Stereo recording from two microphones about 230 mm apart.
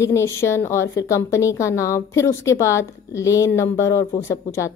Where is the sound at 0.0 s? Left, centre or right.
Centre.